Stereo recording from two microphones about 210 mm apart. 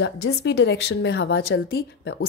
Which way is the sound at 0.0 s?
55° left (ahead or behind).